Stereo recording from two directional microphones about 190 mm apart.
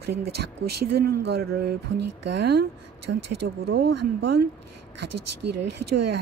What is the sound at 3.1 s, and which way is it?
Speech, 90° right.